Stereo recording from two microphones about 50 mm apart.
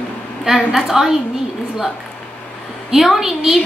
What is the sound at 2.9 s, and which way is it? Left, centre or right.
Speech, centre.